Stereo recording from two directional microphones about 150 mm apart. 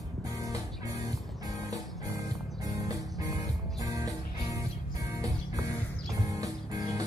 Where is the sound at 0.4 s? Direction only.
20° right (ahead or behind).